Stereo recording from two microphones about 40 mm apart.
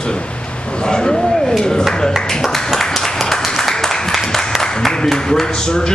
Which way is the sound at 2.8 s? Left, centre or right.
Centre.